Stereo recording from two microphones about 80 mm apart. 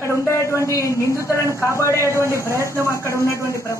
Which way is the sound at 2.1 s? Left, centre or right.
Right.